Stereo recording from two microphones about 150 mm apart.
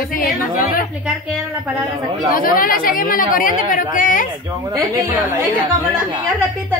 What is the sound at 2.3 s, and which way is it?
Speech, 70° left (ahead or behind).